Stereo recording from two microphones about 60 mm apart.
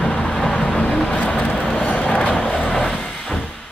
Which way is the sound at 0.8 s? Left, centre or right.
Centre.